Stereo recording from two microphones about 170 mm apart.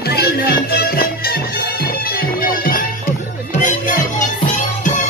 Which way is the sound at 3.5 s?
50° left (ahead or behind).